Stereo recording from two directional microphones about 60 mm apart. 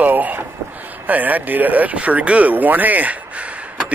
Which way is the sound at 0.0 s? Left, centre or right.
Right.